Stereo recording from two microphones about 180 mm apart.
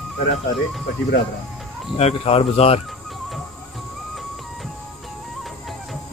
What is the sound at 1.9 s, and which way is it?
Speech, 35° left (ahead or behind).